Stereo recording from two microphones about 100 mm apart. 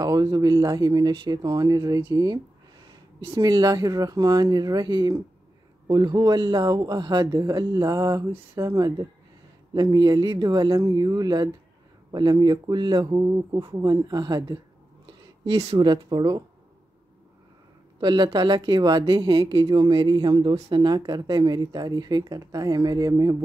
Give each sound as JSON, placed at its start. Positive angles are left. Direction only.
{"t": 0.0, "sound": "a woman's voice", "side_deg": -40}
{"t": 15.8, "sound": "a woman's voice", "side_deg": -45}
{"t": 18.0, "sound": "a woman's voice", "side_deg": -45}